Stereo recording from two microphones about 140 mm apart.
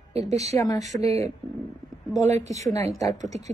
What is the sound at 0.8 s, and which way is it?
Speech, 50° right (ahead or behind).